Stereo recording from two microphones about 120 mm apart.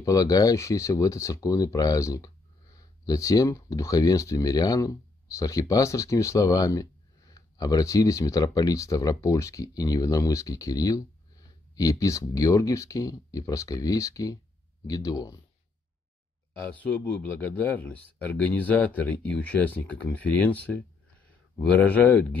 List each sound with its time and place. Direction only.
0.0 s speech: 30° left (ahead or behind)
16.7 s speech: 10° left (ahead or behind)